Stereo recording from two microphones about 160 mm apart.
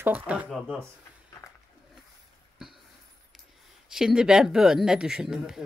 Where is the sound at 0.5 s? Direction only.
5° left (ahead or behind).